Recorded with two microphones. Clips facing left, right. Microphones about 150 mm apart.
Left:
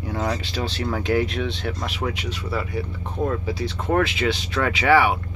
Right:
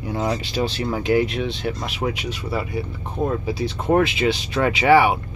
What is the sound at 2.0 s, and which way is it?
Speech, 15° right (ahead or behind).